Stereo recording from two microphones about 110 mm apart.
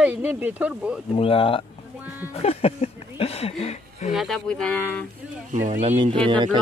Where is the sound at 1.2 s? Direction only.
55° left (ahead or behind); by 4.1 s 80° left.